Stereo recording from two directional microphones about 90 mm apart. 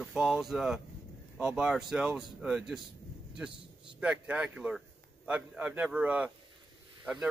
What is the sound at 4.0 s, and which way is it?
A man's voice, 15° right (ahead or behind).